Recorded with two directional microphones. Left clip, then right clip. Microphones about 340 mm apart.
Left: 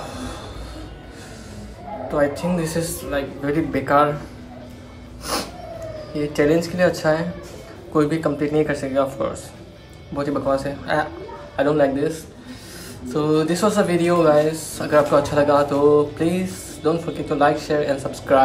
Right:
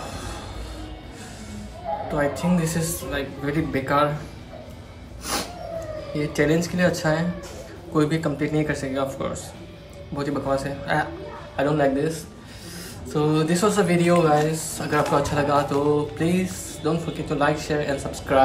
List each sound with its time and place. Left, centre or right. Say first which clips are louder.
0.0 s music: left 2 dB; centre
2.1 s speech: left 5 dB; centre
5.3 s a sound: left 2 dB; centre
6.1 s speech: left 4 dB; centre